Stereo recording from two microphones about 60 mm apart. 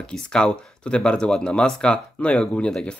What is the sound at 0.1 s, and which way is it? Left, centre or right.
Speech, centre.